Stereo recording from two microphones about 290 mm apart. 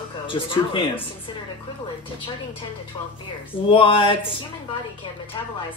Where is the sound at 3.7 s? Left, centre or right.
Centre.